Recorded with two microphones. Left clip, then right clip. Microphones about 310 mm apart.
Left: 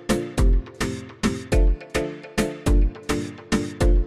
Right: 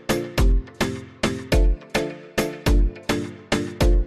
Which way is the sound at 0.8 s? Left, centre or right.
Centre.